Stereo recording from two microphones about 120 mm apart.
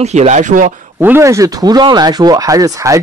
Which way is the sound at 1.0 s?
20° right (ahead or behind).